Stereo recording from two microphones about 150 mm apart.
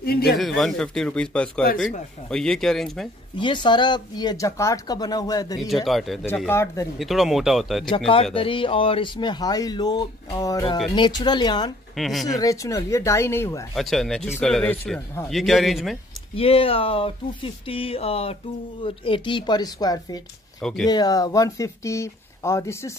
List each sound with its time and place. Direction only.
0.0 s speech: 90° left
0.4 s speech: centre (ahead or behind)
3.3 s speech: 30° left (ahead or behind)
5.6 s speech: centre (ahead or behind)
6.2 s speech: 15° left (ahead or behind)
7.0 s speech: centre (ahead or behind)
8.4 s speech: 35° left (ahead or behind)
12.0 s speech: centre (ahead or behind)
12.3 s speech: 20° left (ahead or behind)
13.7 s speech: centre (ahead or behind)
16.3 s speech: 40° left (ahead or behind); by 22.9 s 20° left (ahead or behind)